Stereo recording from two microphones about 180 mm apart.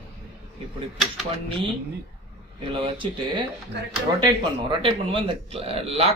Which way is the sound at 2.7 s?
25° right (ahead or behind).